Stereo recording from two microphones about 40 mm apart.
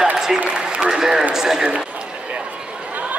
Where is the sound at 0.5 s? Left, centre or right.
Right.